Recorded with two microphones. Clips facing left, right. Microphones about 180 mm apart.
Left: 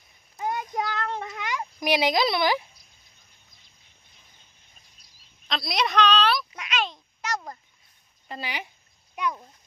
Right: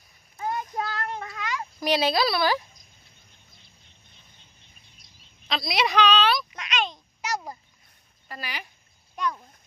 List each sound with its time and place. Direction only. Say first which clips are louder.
0.4 s child singing: left 1 dB; 15° left (ahead or behind)
0.9 s cat: left 2 dB; 25° left (ahead or behind)
5.5 s a woman's voice: right 1 dB; 5° right (ahead or behind)
6.5 s a sound: even; 5° left (ahead or behind)
8.3 s speech: left 3 dB; 20° left (ahead or behind)